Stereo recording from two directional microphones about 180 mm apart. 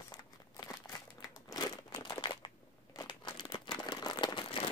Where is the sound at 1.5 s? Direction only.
20° left (ahead or behind).